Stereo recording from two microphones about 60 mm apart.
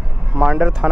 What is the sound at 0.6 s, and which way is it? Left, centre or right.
Speech, centre.